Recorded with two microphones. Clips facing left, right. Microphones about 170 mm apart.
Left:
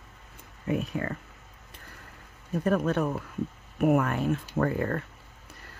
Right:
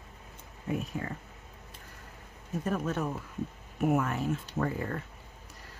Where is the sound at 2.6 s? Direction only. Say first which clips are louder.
Left 6 dB; 65° left (ahead or behind).